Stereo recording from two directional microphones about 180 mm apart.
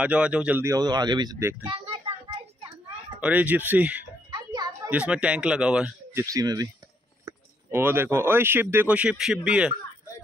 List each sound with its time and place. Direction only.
0.0 s speech: 5° right (ahead or behind); by 1.5 s 20° right (ahead or behind)
1.7 s a sound: 30° right (ahead or behind)
3.2 s speech: 10° right (ahead or behind)
4.3 s music: 20° right (ahead or behind)
4.8 s a man's voice: 5° right (ahead or behind)
6.2 s speech: 20° right (ahead or behind); by 9.8 s 5° right (ahead or behind)